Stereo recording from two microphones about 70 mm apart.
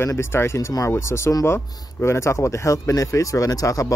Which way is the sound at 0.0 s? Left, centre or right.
Left.